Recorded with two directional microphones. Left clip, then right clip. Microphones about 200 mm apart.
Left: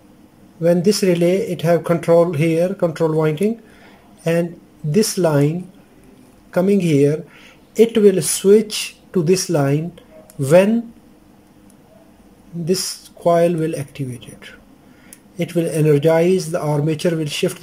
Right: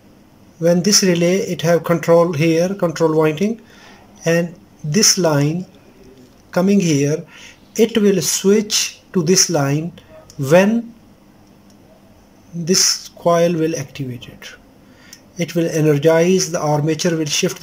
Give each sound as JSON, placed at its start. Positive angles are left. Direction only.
{"t": 0.6, "sound": "speech", "side_deg": 0}
{"t": 13.2, "sound": "speech", "side_deg": 0}